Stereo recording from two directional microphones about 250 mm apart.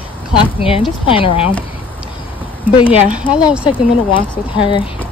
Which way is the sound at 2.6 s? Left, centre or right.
Left.